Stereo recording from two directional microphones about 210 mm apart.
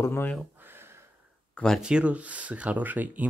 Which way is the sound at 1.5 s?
5° left (ahead or behind).